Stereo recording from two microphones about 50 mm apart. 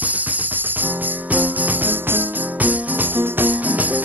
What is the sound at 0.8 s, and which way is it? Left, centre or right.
Jingle bell, right.